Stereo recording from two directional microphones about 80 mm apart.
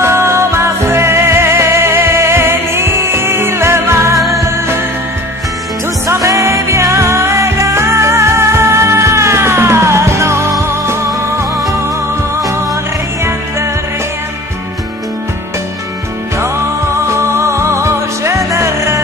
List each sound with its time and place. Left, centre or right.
0.0 s music: right
6.0 s music: right
17.1 s music: right